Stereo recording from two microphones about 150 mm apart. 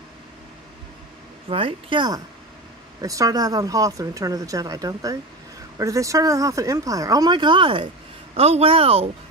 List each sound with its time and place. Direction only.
1.5 s speech: 35° right (ahead or behind)